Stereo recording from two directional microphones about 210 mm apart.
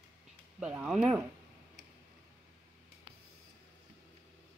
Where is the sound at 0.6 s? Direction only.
5° right (ahead or behind).